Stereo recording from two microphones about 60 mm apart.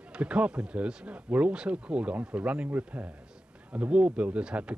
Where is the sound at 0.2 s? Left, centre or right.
Centre.